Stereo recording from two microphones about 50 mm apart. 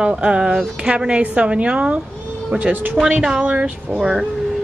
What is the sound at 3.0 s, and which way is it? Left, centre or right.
Speech, centre.